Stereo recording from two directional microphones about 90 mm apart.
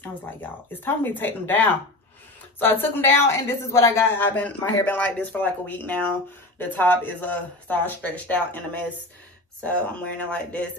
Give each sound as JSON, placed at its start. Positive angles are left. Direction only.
{"t": 0.0, "sound": "speech", "side_deg": 20}